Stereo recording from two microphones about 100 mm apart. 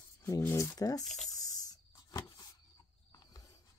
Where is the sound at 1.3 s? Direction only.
40° left (ahead or behind).